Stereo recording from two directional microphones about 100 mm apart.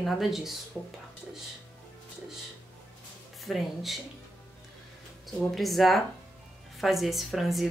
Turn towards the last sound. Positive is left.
turn(degrees=0)  # may be behind; listen again after turning